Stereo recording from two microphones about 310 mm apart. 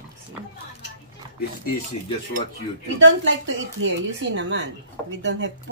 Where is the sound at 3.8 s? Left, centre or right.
Right.